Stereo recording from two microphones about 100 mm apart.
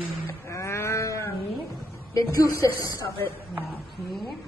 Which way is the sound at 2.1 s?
35° left (ahead or behind).